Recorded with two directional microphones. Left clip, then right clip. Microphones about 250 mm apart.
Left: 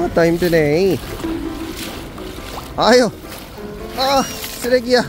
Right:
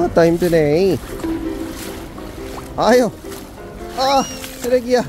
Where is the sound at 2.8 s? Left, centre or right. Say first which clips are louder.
Left 1 dB; centre.